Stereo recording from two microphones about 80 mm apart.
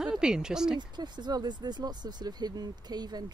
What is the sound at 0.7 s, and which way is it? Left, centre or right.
Speech, right.